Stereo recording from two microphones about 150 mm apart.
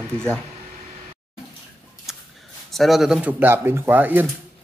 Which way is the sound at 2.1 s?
Centre (ahead or behind).